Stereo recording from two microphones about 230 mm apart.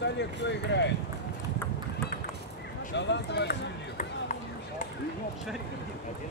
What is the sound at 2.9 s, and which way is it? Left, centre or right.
Speech, left.